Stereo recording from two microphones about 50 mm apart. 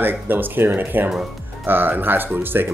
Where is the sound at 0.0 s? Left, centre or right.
Right.